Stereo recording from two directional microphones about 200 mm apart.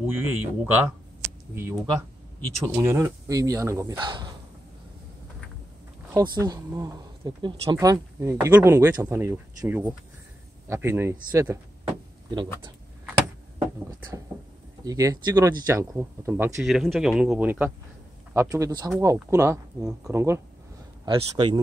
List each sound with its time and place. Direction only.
0.0 s speech: 10° right (ahead or behind)
6.1 s speech: 20° right (ahead or behind)
14.9 s speech: 15° right (ahead or behind)
16.6 s speech: centre (ahead or behind)
21.0 s a man's voice: 25° right (ahead or behind)